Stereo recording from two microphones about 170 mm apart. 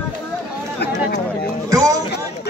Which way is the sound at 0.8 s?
80° left.